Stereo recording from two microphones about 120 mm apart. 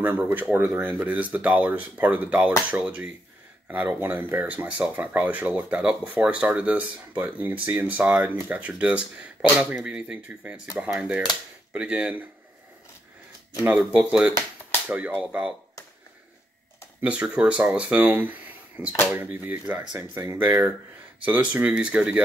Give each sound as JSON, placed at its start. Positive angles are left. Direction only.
{"t": 0.0, "sound": "speech", "side_deg": -15}
{"t": 13.7, "sound": "speech", "side_deg": -10}
{"t": 17.0, "sound": "speech", "side_deg": -10}